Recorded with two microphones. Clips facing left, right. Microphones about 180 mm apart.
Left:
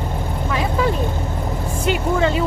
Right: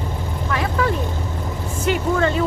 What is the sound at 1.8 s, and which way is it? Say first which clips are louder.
Speech: even; 15° left (ahead or behind).